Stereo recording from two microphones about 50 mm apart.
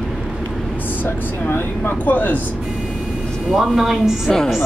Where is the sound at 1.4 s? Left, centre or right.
Left.